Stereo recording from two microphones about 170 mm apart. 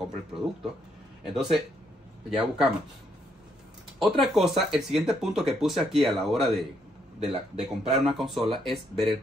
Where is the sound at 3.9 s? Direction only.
Centre (ahead or behind).